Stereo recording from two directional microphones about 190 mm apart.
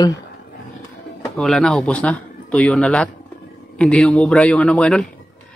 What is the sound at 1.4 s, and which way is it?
A man's voice, 5° left (ahead or behind).